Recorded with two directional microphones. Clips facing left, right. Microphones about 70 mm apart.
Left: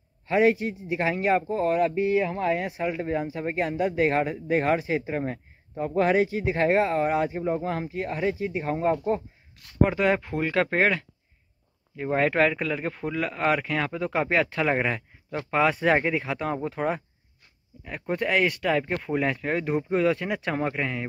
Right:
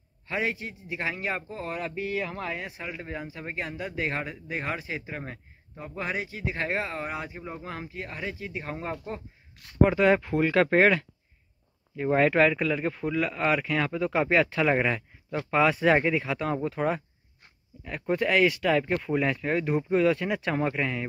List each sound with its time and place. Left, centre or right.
0.4 s speech: left
1.7 s speech: centre
5.9 s speech: left
6.4 s speech: left
8.1 s speech: left
9.9 s speech: centre
12.2 s speech: left
19.2 s speech: left